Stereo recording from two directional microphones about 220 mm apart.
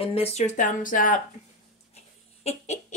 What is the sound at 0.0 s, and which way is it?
Speech, 25° left (ahead or behind).